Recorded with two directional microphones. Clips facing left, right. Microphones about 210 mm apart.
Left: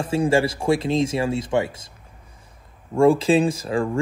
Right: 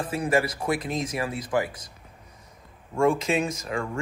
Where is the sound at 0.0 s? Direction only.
30° left (ahead or behind).